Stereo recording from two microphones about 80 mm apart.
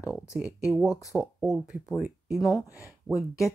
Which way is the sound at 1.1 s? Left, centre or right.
Centre.